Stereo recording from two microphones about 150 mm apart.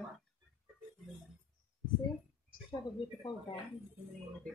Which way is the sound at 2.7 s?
25° left (ahead or behind).